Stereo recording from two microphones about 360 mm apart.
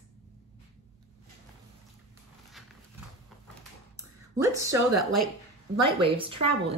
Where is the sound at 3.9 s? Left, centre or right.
Centre.